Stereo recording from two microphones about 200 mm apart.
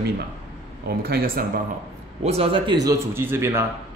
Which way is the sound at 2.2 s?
30° right (ahead or behind).